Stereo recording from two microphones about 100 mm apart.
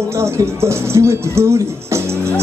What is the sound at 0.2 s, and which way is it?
Speech, 30° right (ahead or behind).